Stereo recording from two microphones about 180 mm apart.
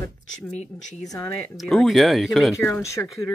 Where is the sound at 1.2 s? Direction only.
15° left (ahead or behind).